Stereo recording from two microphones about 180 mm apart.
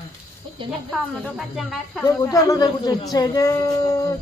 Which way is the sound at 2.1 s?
20° left (ahead or behind).